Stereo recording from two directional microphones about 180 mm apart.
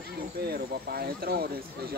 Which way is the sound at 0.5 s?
60° right (ahead or behind).